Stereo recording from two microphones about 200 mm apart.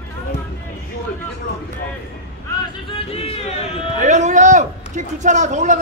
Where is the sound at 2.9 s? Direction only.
30° left (ahead or behind).